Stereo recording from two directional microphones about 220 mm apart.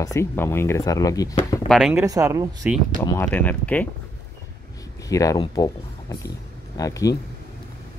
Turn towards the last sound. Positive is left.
turn(degrees=15)  # may be behind; listen again after turning